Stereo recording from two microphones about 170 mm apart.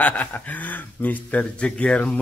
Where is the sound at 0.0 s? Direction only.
10° left (ahead or behind).